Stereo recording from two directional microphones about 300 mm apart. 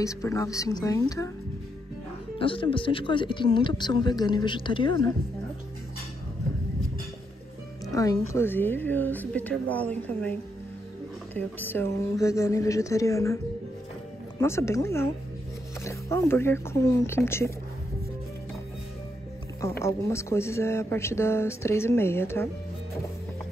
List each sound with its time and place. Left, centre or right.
0.0 s speech: centre
2.3 s speech: centre
7.8 s music: centre
8.3 s speech: centre
11.3 s speech: centre
14.4 s speech: centre
19.8 s speech: centre